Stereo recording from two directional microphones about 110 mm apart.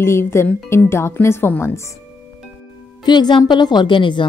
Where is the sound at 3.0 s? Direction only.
40° left (ahead or behind).